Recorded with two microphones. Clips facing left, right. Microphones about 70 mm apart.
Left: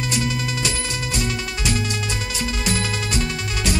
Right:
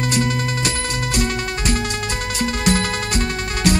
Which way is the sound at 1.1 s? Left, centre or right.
Right.